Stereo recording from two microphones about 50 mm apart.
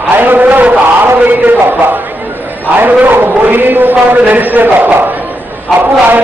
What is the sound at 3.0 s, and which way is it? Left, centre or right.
A man's voice, right.